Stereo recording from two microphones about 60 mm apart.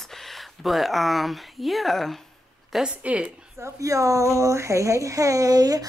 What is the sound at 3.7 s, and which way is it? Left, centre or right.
Speech, right.